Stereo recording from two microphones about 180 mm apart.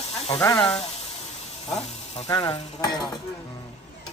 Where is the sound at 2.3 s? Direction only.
20° left (ahead or behind).